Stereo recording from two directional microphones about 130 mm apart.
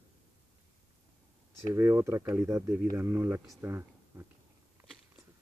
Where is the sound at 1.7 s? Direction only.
20° right (ahead or behind).